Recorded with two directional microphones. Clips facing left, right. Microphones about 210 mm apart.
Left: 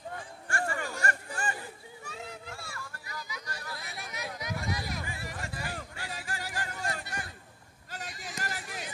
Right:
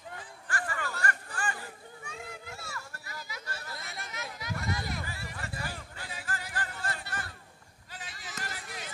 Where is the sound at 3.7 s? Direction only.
Centre (ahead or behind).